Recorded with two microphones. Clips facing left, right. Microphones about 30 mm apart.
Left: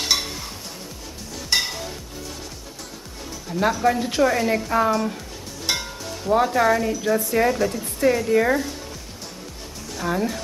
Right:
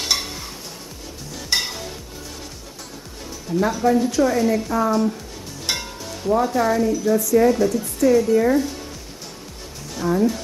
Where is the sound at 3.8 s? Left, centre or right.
Left.